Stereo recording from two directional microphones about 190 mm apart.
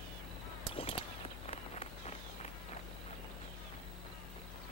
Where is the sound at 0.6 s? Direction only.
30° left (ahead or behind).